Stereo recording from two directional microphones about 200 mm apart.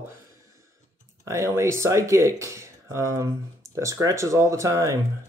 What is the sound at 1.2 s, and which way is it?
Speech, 15° right (ahead or behind).